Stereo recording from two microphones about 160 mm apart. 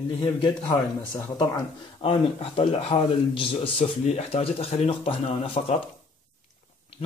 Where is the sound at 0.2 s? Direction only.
25° left (ahead or behind).